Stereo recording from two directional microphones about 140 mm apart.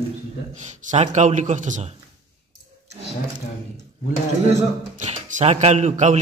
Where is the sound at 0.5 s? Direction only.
55° right (ahead or behind).